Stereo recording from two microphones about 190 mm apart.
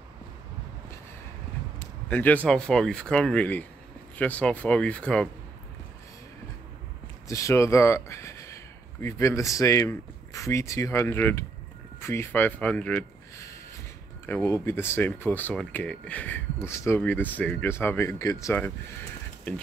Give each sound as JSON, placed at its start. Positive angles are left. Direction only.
{"t": 2.0, "sound": "speech", "side_deg": 10}
{"t": 7.2, "sound": "speech", "side_deg": 15}